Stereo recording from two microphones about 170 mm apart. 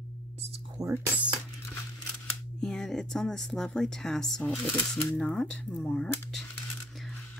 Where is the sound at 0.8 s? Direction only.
20° right (ahead or behind).